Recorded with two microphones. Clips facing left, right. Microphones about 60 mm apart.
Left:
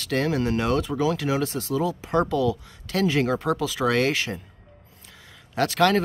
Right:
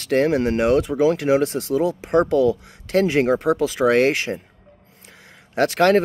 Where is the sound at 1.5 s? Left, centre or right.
Right.